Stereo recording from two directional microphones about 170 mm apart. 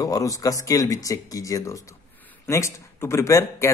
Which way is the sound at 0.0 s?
20° left (ahead or behind).